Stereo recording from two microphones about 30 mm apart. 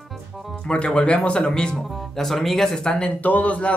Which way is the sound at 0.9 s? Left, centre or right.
Left.